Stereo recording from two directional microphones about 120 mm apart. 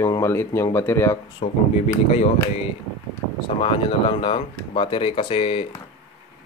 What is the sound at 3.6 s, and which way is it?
Speech, 45° left (ahead or behind).